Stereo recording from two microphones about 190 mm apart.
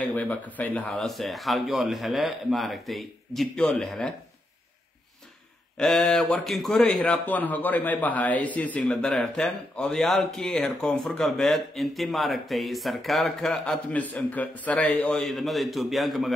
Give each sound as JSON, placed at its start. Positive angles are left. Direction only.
{"t": 0.1, "sound": "a man's voice", "side_deg": 10}
{"t": 5.8, "sound": "a man's voice", "side_deg": 0}